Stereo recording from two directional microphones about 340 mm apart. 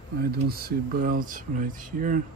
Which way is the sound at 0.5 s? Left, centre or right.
Right.